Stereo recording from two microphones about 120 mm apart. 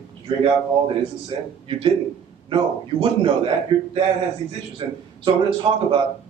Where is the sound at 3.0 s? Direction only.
45° right (ahead or behind).